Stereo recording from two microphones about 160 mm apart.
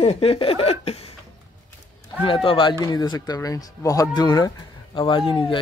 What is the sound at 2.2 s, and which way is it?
Speech, 35° left (ahead or behind).